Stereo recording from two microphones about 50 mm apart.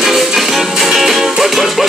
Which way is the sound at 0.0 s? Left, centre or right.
Centre.